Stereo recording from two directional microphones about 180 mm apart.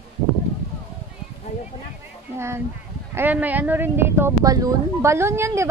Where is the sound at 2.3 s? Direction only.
15° right (ahead or behind).